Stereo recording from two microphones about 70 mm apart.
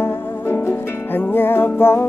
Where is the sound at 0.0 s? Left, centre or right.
Left.